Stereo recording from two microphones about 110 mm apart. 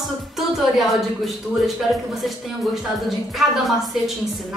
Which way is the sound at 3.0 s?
Centre (ahead or behind).